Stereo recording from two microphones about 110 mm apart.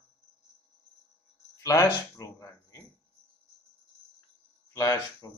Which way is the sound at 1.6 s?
30° left (ahead or behind).